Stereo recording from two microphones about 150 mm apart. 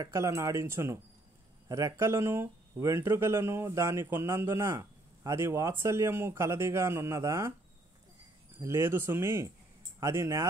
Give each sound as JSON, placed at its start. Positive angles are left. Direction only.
{"t": 0.0, "sound": "speech", "side_deg": -20}
{"t": 8.5, "sound": "speech", "side_deg": -15}